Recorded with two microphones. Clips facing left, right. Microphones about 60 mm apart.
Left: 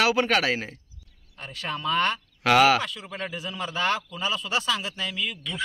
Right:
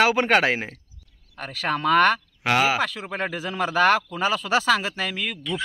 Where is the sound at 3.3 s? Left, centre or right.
Right.